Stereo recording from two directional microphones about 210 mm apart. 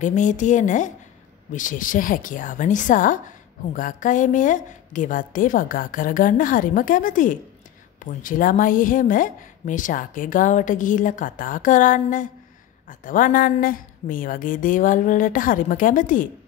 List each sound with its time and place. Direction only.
0.0 s a woman's voice: 35° left (ahead or behind)